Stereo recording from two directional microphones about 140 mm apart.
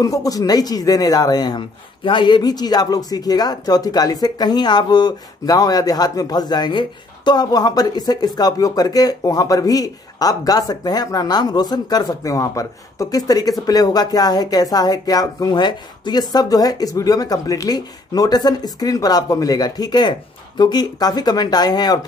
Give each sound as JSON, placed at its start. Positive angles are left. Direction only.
{"t": 0.0, "sound": "speech", "side_deg": 25}